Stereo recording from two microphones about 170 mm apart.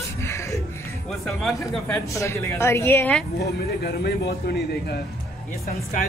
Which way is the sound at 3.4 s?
70° left (ahead or behind).